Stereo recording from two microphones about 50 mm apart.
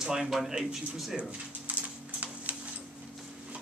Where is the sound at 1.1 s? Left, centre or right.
Right.